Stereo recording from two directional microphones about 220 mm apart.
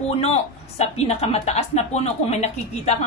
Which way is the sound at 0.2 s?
30° left (ahead or behind).